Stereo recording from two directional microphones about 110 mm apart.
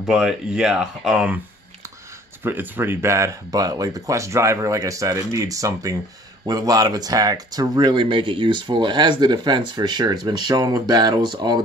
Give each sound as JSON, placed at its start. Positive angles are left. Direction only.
{"t": 0.0, "sound": "speech", "side_deg": -5}
{"t": 2.4, "sound": "speech", "side_deg": -20}